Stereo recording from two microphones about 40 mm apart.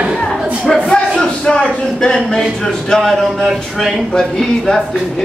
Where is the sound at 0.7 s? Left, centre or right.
Centre.